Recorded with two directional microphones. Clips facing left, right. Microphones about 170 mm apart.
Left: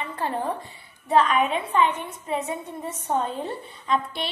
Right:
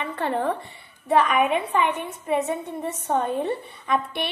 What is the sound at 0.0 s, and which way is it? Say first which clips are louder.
A woman's voice: right 3 dB; 70° right (ahead or behind).